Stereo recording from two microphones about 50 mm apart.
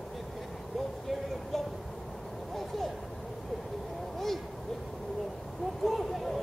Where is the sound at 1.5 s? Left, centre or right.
Centre.